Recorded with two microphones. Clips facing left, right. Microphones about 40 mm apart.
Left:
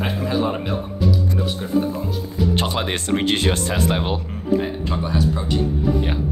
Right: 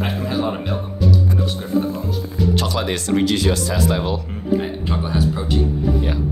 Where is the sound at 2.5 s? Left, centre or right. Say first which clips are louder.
Right 1 dB; left.